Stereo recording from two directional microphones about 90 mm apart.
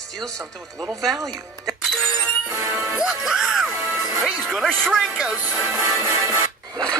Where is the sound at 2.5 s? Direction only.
30° right (ahead or behind).